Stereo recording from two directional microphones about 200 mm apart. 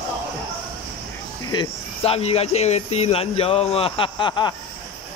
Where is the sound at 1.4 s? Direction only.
25° left (ahead or behind).